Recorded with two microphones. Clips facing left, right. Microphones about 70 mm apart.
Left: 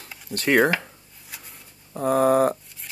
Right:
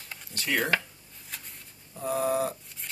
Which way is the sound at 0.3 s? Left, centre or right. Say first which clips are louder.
Left 10 dB; left.